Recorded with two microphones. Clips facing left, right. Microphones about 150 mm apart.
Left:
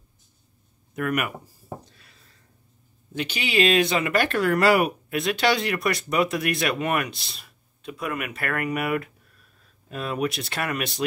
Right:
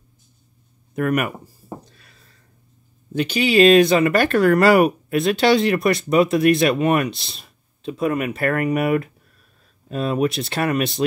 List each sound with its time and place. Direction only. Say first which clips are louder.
0.9 s speech: right 6 dB; 40° right (ahead or behind)
3.2 s speech: right 8 dB; 40° right (ahead or behind)